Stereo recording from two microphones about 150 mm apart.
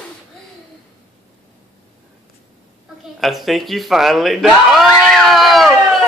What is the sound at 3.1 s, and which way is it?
Speech, centre (ahead or behind).